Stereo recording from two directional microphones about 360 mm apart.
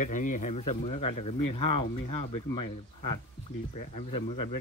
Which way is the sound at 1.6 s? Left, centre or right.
Left.